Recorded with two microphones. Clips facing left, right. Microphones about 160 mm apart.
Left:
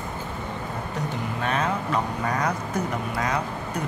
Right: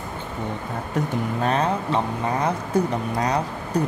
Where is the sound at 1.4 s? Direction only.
35° right (ahead or behind).